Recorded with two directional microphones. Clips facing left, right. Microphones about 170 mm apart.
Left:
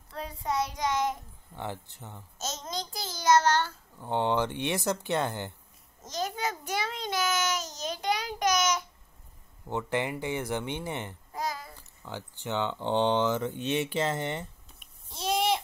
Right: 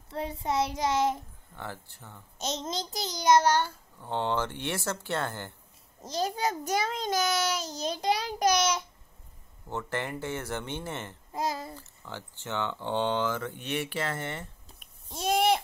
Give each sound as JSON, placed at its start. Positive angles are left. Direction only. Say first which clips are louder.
{"t": 0.1, "sound": "child singing", "louder": "right 2 dB", "side_deg": -25}
{"t": 1.6, "sound": "speech", "louder": "left 3 dB", "side_deg": 20}
{"t": 2.6, "sound": "child singing", "louder": "right 3 dB", "side_deg": -25}
{"t": 4.0, "sound": "speech", "louder": "left 2 dB", "side_deg": 15}
{"t": 6.0, "sound": "a child's voice", "louder": "right 3 dB", "side_deg": -30}
{"t": 9.7, "sound": "speech", "louder": "left 3 dB", "side_deg": 15}
{"t": 11.3, "sound": "child singing", "louder": "right 3 dB", "side_deg": -25}
{"t": 11.8, "sound": "speech", "louder": "left 2 dB", "side_deg": 15}
{"t": 15.0, "sound": "babbling", "louder": "right 3 dB", "side_deg": -50}